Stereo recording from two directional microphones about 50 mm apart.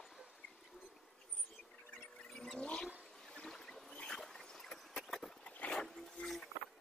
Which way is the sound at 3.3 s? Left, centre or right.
Centre.